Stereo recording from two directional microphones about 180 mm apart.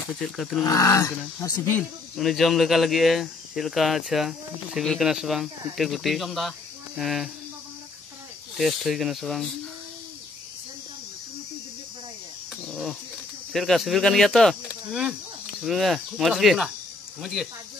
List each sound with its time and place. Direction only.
0.1 s speech: centre (ahead or behind)
0.7 s speech: 20° left (ahead or behind)
1.8 s speech: centre (ahead or behind)
8.5 s speech: centre (ahead or behind)
13.5 s speech: centre (ahead or behind)